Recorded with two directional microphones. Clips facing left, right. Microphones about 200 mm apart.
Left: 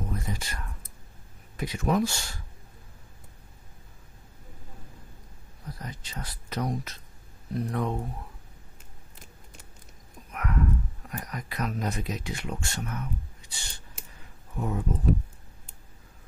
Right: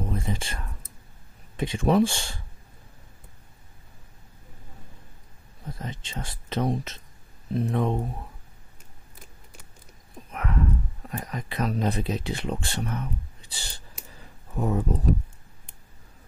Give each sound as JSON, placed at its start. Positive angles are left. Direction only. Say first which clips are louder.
{"t": 0.0, "sound": "speech", "louder": "right 4 dB", "side_deg": -30}
{"t": 5.7, "sound": "speech", "louder": "right 4 dB", "side_deg": -25}
{"t": 10.3, "sound": "clip-clop", "louder": "right 1 dB", "side_deg": -30}
{"t": 11.1, "sound": "speech", "louder": "right 5 dB", "side_deg": -25}